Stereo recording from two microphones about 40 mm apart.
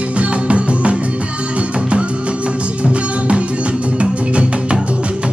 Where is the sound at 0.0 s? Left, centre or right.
Right.